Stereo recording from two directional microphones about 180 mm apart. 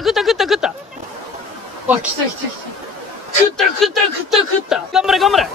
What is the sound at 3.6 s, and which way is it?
Speech, centre (ahead or behind).